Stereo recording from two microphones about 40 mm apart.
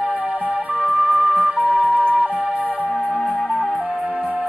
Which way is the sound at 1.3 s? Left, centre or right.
Right.